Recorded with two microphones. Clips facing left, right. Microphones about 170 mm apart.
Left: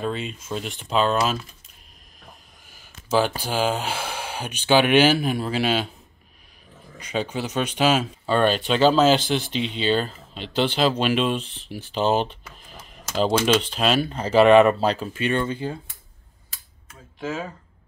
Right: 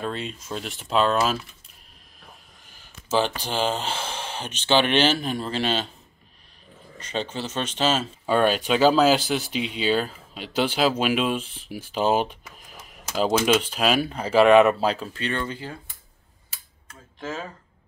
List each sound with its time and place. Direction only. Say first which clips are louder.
0.0 s speech: left 2 dB; centre (ahead or behind)
3.2 s speech: left 2 dB; 10° left (ahead or behind)
7.0 s speech: left 3 dB; 10° left (ahead or behind)
8.3 s speech: even; 10° right (ahead or behind)
15.1 s speech: left 5 dB; 15° left (ahead or behind)
17.2 s speech: left 3 dB; 10° left (ahead or behind)